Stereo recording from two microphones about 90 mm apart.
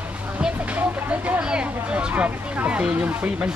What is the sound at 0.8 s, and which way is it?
Vehicle, 15° right (ahead or behind).